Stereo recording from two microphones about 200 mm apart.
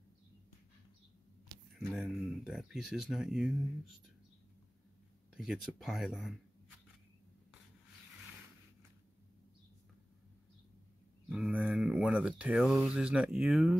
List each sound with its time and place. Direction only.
1.9 s speech: centre (ahead or behind)
5.3 s speech: centre (ahead or behind)
11.2 s speech: centre (ahead or behind)